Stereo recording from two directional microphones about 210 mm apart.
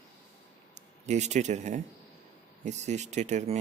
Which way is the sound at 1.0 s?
35° right (ahead or behind).